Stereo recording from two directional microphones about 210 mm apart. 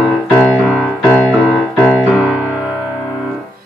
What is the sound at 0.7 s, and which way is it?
Music, centre (ahead or behind).